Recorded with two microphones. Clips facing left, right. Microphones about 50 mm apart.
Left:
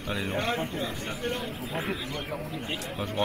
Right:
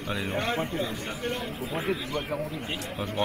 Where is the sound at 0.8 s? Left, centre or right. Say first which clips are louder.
Even; centre.